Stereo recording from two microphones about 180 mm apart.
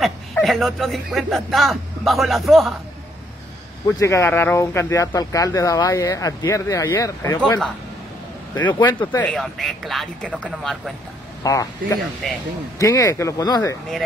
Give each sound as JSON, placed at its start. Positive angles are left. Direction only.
{"t": 0.0, "sound": "speech", "side_deg": 0}
{"t": 3.8, "sound": "speech", "side_deg": 15}
{"t": 8.7, "sound": "speech", "side_deg": 15}
{"t": 11.4, "sound": "speech", "side_deg": 20}
{"t": 12.2, "sound": "speech", "side_deg": 5}
{"t": 12.7, "sound": "speech", "side_deg": 20}